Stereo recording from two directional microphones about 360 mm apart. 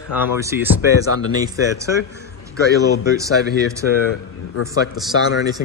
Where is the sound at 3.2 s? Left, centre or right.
Centre.